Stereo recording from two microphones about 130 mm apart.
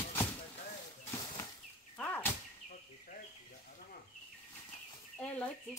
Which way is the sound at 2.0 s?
15° left (ahead or behind).